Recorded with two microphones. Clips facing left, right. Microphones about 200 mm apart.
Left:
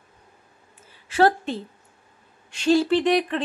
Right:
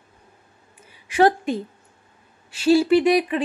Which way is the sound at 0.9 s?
15° right (ahead or behind).